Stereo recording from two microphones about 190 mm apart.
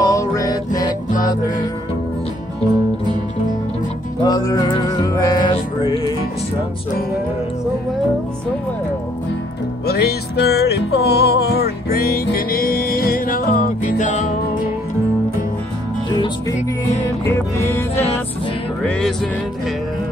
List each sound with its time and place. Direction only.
0.0 s music: 15° left (ahead or behind)
4.2 s music: 20° left (ahead or behind)
9.8 s music: 55° left (ahead or behind)
17.2 s music: 10° left (ahead or behind)